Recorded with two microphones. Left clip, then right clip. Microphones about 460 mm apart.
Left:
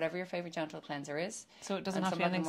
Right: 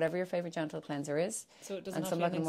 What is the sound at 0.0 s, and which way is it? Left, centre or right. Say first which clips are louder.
Speech: right 4 dB; right.